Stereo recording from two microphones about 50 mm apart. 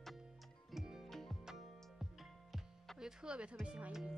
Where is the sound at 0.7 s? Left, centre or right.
Centre.